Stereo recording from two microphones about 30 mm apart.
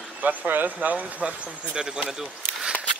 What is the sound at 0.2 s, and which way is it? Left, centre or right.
Speech, right.